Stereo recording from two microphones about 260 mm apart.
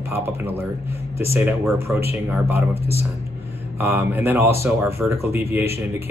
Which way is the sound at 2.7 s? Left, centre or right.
Left.